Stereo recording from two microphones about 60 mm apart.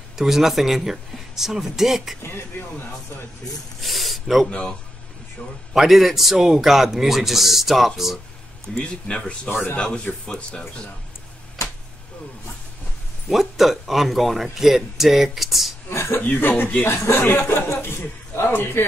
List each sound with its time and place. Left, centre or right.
0.2 s speech: centre
2.2 s speech: left
3.8 s a sound: centre
4.5 s speech: centre
5.7 s speech: centre
8.7 s speech: centre
13.3 s speech: centre
15.9 s a sound: left
16.2 s speech: left
16.8 s speech: left